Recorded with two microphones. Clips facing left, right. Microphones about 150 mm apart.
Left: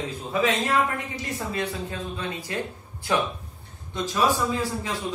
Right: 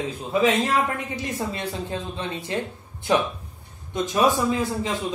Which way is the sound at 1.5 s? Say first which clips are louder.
Even; 30° right (ahead or behind).